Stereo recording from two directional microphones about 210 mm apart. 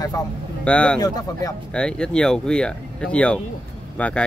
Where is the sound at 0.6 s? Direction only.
5° left (ahead or behind).